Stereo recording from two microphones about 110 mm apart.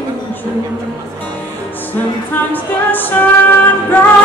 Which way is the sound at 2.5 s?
15° left (ahead or behind).